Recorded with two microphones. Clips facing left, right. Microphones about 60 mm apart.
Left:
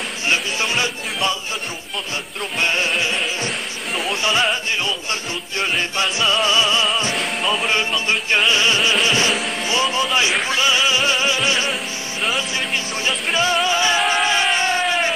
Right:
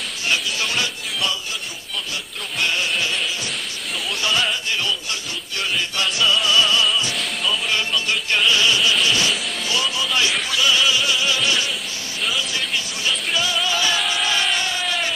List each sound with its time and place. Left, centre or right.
0.3 s music: left
2.6 s music: left
4.1 s music: left
7.4 s speech: left
7.7 s music: left